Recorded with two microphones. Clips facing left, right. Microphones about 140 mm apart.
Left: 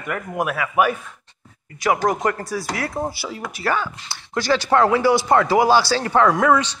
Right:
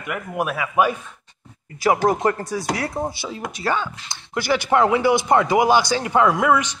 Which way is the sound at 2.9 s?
5° left (ahead or behind).